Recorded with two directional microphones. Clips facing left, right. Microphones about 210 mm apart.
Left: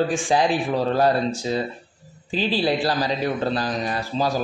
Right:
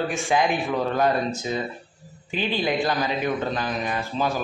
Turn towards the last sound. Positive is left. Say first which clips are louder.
# left 2 dB
turn(degrees=35)  # may be behind; listen again after turning